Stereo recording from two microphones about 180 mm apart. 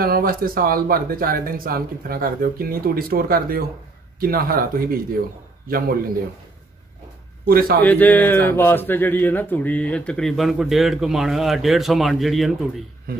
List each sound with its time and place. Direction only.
0.0 s speech: 55° right (ahead or behind)
7.4 s speech: 55° right (ahead or behind)
7.8 s speech: 10° left (ahead or behind)